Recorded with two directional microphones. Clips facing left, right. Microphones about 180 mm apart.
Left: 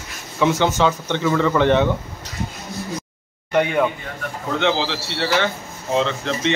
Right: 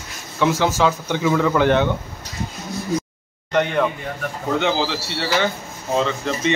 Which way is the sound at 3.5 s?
5° left (ahead or behind).